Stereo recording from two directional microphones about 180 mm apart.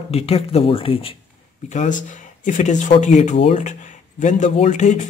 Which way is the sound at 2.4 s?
45° left (ahead or behind).